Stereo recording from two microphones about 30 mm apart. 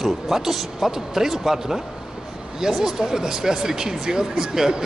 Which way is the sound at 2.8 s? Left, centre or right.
Centre.